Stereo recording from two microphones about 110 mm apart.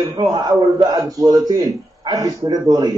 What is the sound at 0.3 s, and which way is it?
A man's voice, 40° right (ahead or behind).